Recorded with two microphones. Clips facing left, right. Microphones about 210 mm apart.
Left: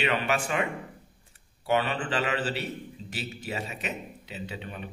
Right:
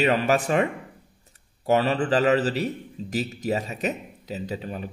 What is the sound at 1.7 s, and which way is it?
A man's voice, 40° right (ahead or behind).